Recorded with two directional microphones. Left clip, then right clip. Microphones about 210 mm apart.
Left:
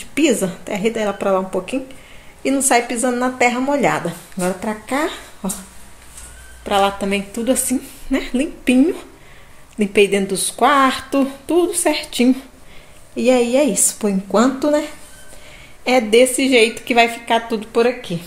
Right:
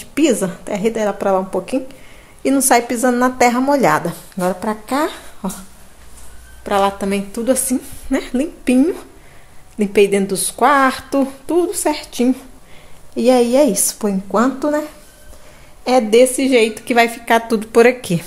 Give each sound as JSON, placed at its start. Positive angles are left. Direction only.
{"t": 0.1, "sound": "a woman's voice", "side_deg": 0}
{"t": 6.6, "sound": "a woman's voice", "side_deg": -5}
{"t": 13.1, "sound": "a woman's voice", "side_deg": -15}
{"t": 16.1, "sound": "a woman's voice", "side_deg": -5}
{"t": 17.3, "sound": "speech", "side_deg": -30}